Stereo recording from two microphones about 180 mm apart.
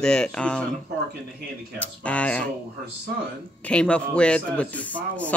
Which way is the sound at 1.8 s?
5° left (ahead or behind).